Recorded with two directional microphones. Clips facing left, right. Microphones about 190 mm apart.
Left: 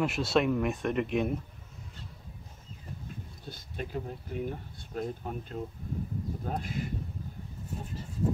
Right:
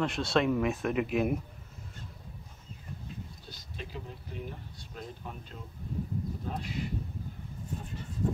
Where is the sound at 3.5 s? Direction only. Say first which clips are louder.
Left 8 dB; 50° left (ahead or behind).